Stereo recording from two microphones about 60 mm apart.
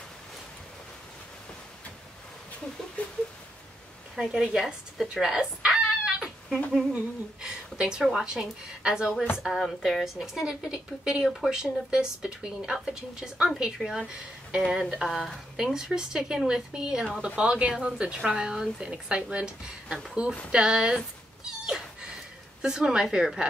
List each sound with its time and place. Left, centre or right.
4.2 s a woman's voice: centre
5.0 s cat: centre
7.4 s a sound: centre
8.0 s a woman's voice: centre
21.5 s cat: centre
22.6 s a woman's voice: centre